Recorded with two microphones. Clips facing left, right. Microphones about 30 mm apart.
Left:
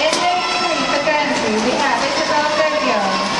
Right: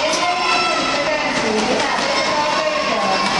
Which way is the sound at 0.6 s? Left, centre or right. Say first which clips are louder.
Left 1 dB; centre.